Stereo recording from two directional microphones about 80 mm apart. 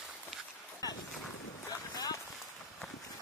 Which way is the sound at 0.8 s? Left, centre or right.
Left.